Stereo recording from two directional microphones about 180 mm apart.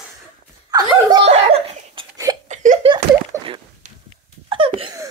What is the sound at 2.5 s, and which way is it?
Laughter, 40° right (ahead or behind).